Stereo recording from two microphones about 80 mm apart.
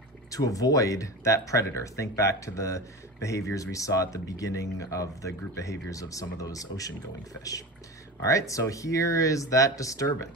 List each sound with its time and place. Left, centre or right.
0.3 s speech: left
8.3 s speech: left